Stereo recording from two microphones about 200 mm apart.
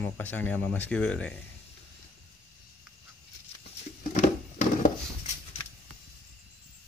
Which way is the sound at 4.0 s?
45° left (ahead or behind).